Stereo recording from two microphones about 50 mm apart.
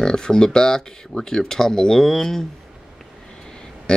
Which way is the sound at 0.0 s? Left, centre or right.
Centre.